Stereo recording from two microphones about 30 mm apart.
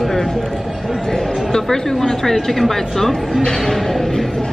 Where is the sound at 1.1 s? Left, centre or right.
Centre.